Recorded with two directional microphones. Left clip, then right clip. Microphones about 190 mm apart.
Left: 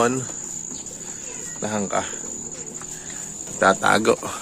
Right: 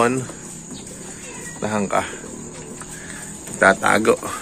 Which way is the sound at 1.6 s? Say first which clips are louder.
Right 4 dB; 20° left (ahead or behind).